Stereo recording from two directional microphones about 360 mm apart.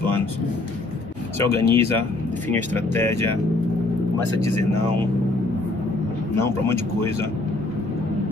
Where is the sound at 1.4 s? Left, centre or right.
Centre.